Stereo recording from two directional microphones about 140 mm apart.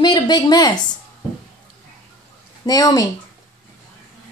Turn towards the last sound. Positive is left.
turn(degrees=25)  # may be behind; listen again after turning